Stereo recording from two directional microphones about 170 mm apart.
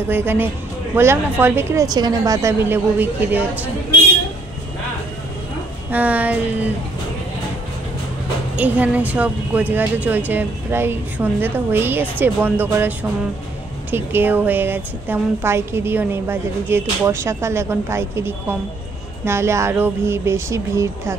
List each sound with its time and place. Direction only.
0.1 s a woman's voice: 10° right (ahead or behind)
5.9 s a woman's voice: 10° right (ahead or behind)
8.5 s a woman's voice: 10° right (ahead or behind)